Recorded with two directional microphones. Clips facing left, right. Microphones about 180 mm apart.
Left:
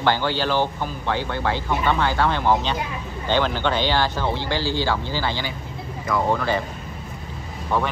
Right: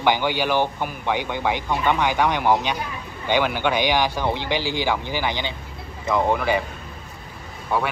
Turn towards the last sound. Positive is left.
turn(degrees=-10)  # may be behind; listen again after turning